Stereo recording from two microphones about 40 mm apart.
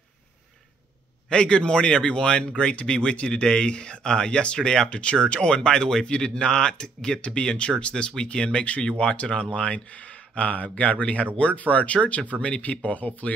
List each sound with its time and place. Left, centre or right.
1.3 s speech: left
4.8 s speech: left